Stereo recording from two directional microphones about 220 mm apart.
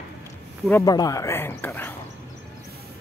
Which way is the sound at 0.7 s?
15° left (ahead or behind).